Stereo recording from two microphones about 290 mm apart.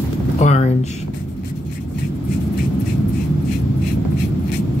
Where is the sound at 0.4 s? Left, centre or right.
Left.